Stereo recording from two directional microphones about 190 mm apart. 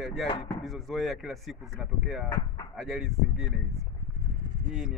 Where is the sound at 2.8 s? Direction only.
Centre (ahead or behind).